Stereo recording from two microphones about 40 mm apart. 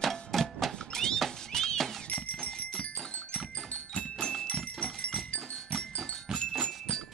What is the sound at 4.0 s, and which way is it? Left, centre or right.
Music, centre.